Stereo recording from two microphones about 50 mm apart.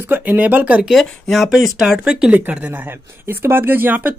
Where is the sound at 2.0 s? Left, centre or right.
Centre.